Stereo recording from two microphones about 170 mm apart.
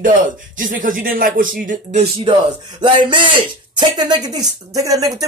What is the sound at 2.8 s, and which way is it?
Speech, 25° right (ahead or behind).